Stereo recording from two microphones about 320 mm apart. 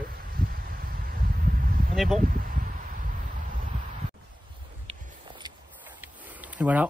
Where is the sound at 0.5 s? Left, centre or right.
Right.